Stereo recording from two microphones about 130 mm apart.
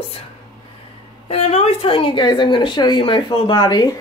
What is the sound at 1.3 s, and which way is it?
Speech, 50° left (ahead or behind).